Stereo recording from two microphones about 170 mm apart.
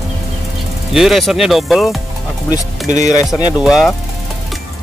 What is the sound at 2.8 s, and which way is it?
Speech, 45° right (ahead or behind).